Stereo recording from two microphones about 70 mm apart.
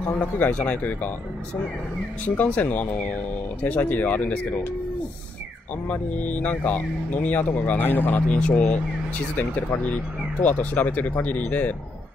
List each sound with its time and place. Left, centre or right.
0.2 s speech: centre
2.2 s speech: left
5.9 s speech: left
9.8 s speech: left